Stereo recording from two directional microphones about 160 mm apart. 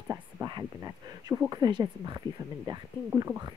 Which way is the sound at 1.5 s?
25° right (ahead or behind).